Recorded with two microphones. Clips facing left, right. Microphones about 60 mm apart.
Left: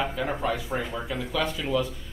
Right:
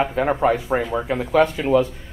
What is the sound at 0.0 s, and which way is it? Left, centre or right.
Speech, right.